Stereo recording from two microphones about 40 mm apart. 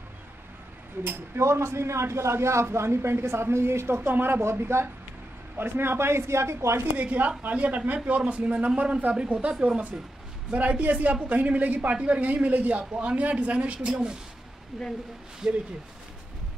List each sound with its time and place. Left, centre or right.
1.0 s speech: right
5.6 s speech: right
7.0 s a man's voice: right
13.8 s a man's voice: right
14.7 s speech: centre